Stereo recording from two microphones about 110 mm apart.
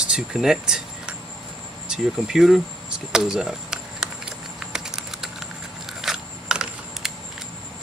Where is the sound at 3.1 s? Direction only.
5° right (ahead or behind).